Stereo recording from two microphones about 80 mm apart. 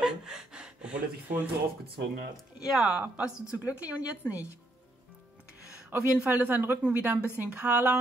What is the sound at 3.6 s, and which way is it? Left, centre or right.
Speech, right.